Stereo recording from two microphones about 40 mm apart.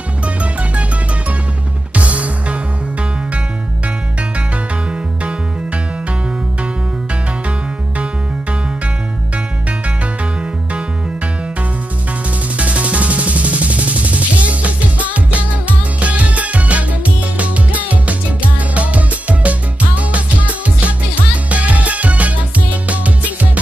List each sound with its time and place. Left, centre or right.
2.0 s music: right
12.5 s music: right